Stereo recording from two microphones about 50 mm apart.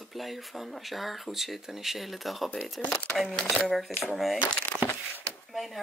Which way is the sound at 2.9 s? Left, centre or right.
Left.